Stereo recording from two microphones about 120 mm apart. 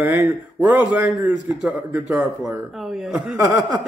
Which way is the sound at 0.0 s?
15° right (ahead or behind).